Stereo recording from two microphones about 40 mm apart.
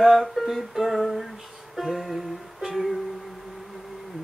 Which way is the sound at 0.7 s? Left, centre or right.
Centre.